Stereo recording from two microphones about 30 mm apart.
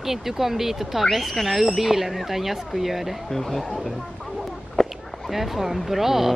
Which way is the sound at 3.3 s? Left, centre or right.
Centre.